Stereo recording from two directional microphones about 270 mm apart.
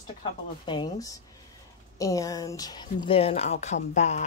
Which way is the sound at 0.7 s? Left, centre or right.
Centre.